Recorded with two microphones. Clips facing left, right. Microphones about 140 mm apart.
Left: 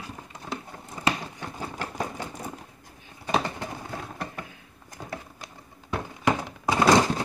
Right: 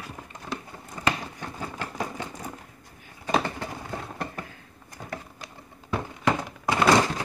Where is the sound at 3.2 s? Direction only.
10° left (ahead or behind).